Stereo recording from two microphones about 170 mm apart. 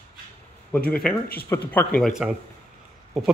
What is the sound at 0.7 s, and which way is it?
Speech, 10° left (ahead or behind).